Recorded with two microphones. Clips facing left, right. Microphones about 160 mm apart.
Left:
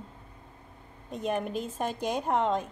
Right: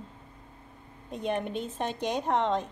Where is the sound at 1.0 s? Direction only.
Centre (ahead or behind).